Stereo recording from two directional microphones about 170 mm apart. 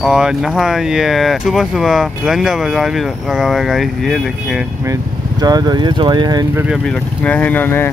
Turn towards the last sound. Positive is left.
turn(degrees=10)  # may be behind; listen again after turning